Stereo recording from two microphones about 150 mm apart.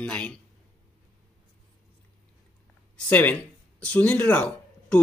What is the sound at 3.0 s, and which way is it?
Speech, 10° left (ahead or behind).